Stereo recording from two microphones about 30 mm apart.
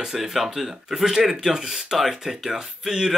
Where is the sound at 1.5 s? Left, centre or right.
Centre.